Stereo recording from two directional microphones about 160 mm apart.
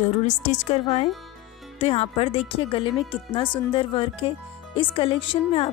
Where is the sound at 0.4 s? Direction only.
45° left (ahead or behind).